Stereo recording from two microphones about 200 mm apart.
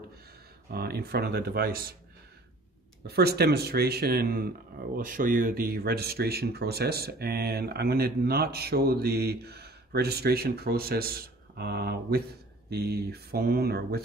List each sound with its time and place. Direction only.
0.7 s speech: 50° right (ahead or behind)
3.1 s speech: 55° right (ahead or behind)